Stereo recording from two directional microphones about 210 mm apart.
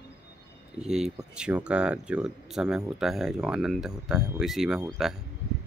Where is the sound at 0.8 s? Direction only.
Centre (ahead or behind).